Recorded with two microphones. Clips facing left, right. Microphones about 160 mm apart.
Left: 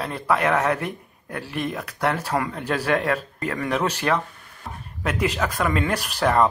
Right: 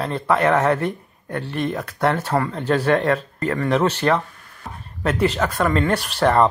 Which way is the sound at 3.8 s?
35° right (ahead or behind).